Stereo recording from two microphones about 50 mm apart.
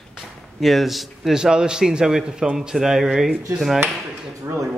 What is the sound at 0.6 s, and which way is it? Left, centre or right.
Speech, centre.